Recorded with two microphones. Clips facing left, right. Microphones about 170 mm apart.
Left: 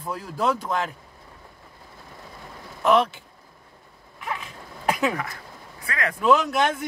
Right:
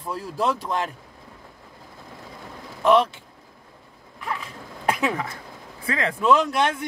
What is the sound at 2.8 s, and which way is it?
Speech, centre (ahead or behind).